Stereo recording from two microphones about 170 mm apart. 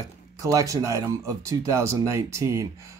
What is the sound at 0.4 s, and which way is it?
Speech, 20° right (ahead or behind).